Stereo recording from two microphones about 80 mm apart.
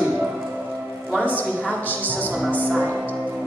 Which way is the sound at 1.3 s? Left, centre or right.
Left.